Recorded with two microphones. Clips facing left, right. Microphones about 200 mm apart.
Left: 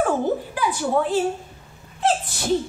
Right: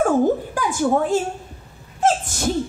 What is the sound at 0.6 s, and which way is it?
Speech, 45° right (ahead or behind).